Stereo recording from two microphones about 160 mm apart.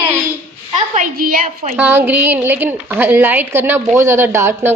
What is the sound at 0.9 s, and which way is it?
Speech, 60° right (ahead or behind).